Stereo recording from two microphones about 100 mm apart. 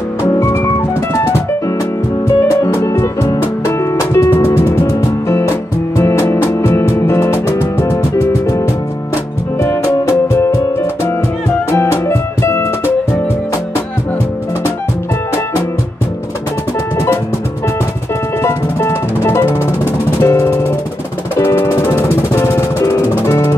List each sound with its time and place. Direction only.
0.4 s music: 30° left (ahead or behind)
2.2 s music: 30° left (ahead or behind)
18.4 s music: 25° left (ahead or behind)